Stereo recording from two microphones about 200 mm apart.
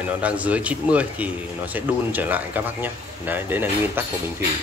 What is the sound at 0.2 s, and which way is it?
Speech, 5° right (ahead or behind).